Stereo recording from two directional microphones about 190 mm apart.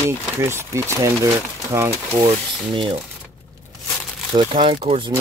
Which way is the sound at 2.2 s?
25° right (ahead or behind).